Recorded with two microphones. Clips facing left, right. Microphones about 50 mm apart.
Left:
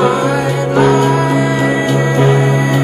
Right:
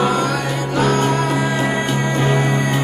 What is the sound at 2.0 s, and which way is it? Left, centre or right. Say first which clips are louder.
Music: left 6 dB; centre.